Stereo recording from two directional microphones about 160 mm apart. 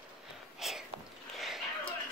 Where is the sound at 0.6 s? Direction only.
Centre (ahead or behind).